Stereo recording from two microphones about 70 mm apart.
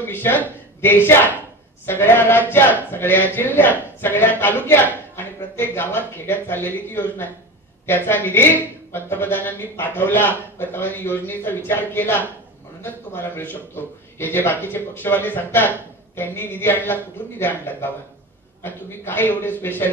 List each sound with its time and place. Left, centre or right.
0.0 s a man's voice: left